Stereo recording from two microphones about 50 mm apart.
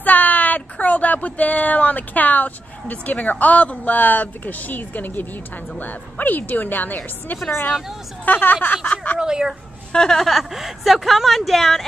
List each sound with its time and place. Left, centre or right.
0.0 s a woman's voice: left
9.2 s speech: centre
9.9 s a woman's voice: centre